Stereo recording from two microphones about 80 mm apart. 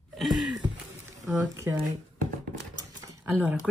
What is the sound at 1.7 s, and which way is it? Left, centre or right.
Speech, right.